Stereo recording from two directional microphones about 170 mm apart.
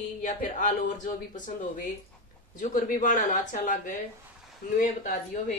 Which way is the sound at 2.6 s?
50° left (ahead or behind).